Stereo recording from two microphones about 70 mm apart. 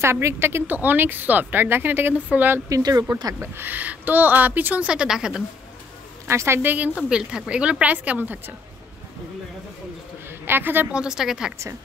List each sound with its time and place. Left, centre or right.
0.0 s speech: right
2.7 s speech: right
3.3 s speech: right
4.8 s a woman's voice: centre
6.2 s a woman's voice: right
7.0 s speech: centre
10.4 s a woman's voice: right
10.9 s a woman's voice: centre